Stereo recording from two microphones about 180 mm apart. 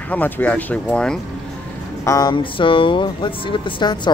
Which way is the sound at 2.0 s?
20° left (ahead or behind).